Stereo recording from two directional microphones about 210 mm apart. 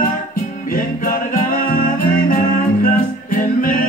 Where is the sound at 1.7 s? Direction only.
45° left (ahead or behind).